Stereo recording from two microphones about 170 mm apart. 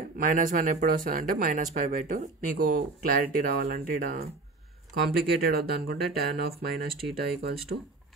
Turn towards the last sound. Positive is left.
turn(degrees=0)  # may be behind; listen again after turning